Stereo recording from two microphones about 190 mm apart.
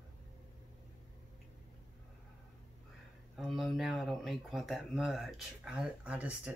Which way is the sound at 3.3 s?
Centre (ahead or behind).